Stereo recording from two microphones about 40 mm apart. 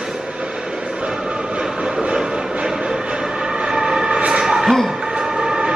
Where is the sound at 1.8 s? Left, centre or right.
Right.